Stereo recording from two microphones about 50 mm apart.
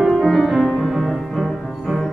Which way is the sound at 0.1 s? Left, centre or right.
Centre.